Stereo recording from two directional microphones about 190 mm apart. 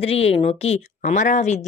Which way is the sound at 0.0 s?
30° left (ahead or behind).